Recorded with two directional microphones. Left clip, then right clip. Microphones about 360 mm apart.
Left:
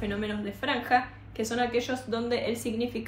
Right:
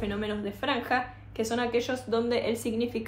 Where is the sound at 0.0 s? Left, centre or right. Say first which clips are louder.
Right 1 dB; centre.